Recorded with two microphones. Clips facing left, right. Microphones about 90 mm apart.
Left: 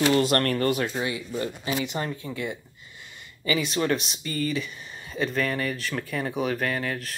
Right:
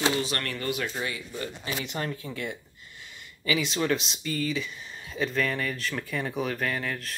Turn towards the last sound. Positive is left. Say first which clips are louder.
# left 2 dB
turn(degrees=0)  # may be behind; listen again after turning